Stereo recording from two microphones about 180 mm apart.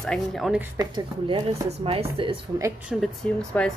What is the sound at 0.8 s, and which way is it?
A woman's voice, 25° right (ahead or behind).